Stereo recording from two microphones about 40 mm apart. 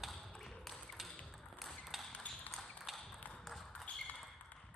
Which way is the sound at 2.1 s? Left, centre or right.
Left.